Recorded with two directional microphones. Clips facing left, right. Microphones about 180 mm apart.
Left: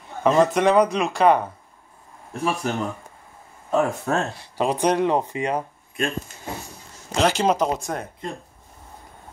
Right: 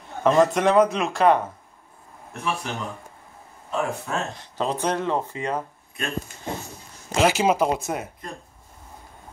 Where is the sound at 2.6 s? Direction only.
45° left (ahead or behind).